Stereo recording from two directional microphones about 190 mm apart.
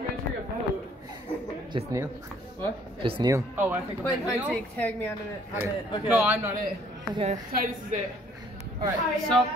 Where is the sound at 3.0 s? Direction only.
30° right (ahead or behind).